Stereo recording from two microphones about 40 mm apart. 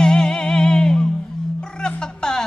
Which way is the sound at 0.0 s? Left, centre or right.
Centre.